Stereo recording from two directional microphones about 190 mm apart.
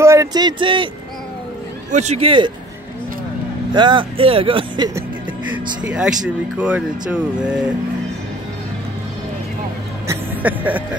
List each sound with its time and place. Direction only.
0.0 s speech: 15° right (ahead or behind)
1.9 s speech: 35° right (ahead or behind)
3.7 s speech: 25° right (ahead or behind)
5.9 s speech: 5° right (ahead or behind)
10.0 s music: 10° right (ahead or behind)